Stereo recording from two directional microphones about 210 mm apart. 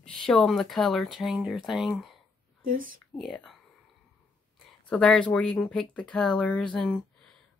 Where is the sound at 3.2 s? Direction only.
Centre (ahead or behind).